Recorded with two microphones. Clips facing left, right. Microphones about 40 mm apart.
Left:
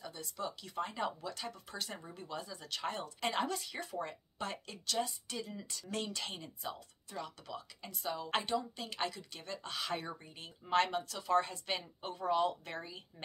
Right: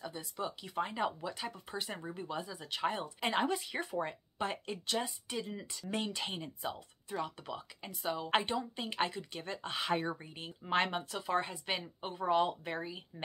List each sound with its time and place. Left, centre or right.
0.0 s speech: centre